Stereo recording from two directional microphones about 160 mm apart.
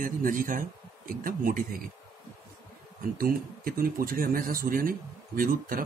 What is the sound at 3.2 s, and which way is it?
Speech, 65° right (ahead or behind).